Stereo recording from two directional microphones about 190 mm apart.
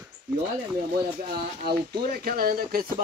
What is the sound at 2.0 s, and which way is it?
Speech, 50° right (ahead or behind).